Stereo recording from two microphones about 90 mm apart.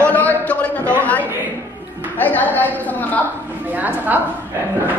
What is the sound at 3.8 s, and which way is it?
Speech, 20° right (ahead or behind).